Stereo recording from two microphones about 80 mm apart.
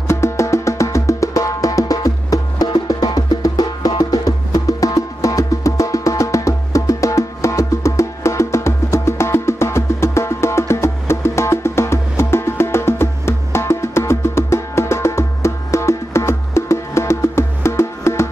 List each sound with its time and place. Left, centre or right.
0.1 s music: left